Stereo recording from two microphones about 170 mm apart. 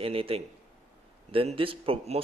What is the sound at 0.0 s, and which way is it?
A man's voice, 35° right (ahead or behind).